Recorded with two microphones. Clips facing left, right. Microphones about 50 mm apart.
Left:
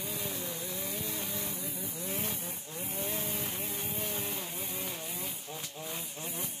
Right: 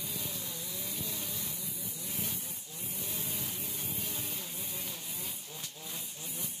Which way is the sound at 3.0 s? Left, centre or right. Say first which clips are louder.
Left 5 dB; left.